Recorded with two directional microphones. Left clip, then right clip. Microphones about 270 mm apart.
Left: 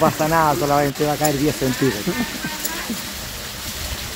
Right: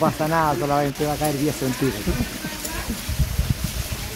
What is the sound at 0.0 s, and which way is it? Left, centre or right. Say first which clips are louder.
Speech: left 4 dB; left.